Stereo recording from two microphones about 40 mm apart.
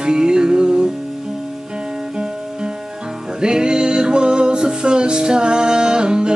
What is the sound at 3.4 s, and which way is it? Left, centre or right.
Music, centre.